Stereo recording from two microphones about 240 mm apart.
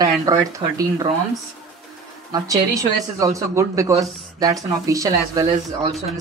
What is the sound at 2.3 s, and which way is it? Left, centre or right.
Speech, centre.